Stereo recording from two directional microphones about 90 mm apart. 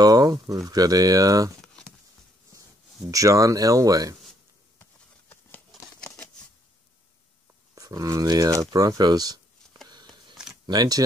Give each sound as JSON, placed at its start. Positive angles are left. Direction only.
{"t": 0.0, "sound": "speech", "side_deg": -45}
{"t": 3.1, "sound": "speech", "side_deg": -40}
{"t": 7.7, "sound": "speech", "side_deg": -40}
{"t": 9.8, "sound": "a sound", "side_deg": -50}
{"t": 10.7, "sound": "speech", "side_deg": -45}